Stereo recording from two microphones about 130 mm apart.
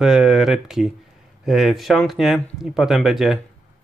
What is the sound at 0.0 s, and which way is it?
Speech, 5° right (ahead or behind).